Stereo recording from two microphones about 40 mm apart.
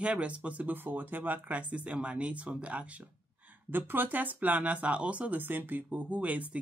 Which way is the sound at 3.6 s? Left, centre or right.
Right.